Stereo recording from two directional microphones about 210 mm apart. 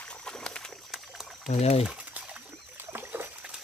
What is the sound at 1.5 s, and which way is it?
Speech, 30° left (ahead or behind).